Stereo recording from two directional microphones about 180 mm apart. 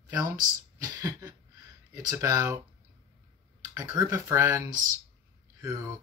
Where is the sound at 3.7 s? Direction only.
20° right (ahead or behind).